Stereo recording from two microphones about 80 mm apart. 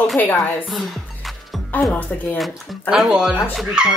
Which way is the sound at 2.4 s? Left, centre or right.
Centre.